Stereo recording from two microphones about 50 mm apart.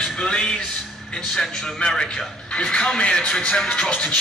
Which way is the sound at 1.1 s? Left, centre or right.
Centre.